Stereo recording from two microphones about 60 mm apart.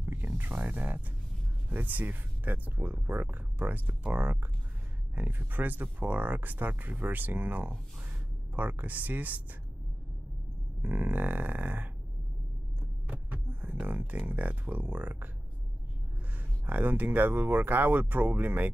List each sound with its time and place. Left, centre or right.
0.0 s music: right
1.7 s speech: right
10.8 s speech: right
13.1 s hum: right
13.8 s speech: right
16.6 s speech: right